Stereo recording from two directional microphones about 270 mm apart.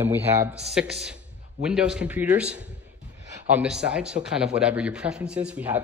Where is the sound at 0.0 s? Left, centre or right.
Centre.